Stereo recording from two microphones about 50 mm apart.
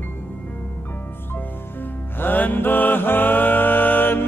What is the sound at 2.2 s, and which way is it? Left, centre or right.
Music, left.